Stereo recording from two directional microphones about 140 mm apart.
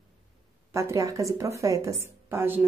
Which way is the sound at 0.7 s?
20° right (ahead or behind).